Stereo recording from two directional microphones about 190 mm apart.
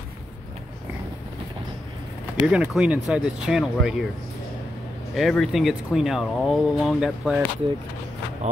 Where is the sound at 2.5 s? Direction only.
5° right (ahead or behind).